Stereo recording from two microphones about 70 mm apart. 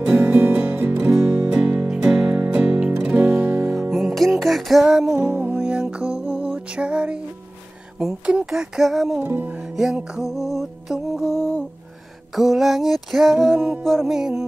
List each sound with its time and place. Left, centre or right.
0.0 s music: right
3.9 s music: centre
5.1 s music: right
5.6 s music: centre
8.5 s music: centre
9.2 s music: right
9.9 s music: centre
13.6 s music: right
13.8 s music: centre
14.1 s music: centre